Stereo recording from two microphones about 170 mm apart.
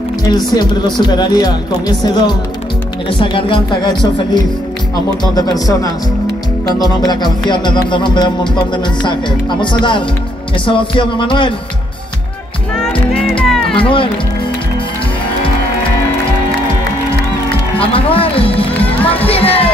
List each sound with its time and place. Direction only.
0.2 s speech: 25° left (ahead or behind)
5.3 s speech: 20° left (ahead or behind)
12.7 s music: centre (ahead or behind)
13.7 s speech: 30° left (ahead or behind)
17.7 s music: 35° left (ahead or behind)